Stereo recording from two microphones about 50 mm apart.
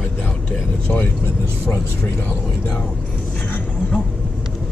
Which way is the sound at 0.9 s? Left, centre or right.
Left.